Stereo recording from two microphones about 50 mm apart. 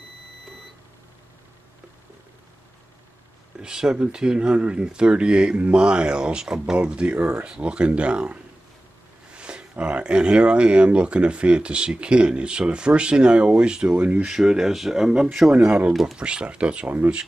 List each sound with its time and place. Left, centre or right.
3.5 s speech: centre
13.8 s speech: right
14.2 s speech: centre
16.2 s speech: right